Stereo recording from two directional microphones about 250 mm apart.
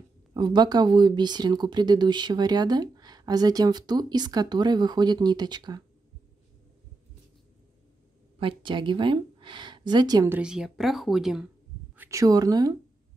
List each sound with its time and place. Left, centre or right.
0.3 s speech: centre
8.4 s speech: centre
12.0 s speech: centre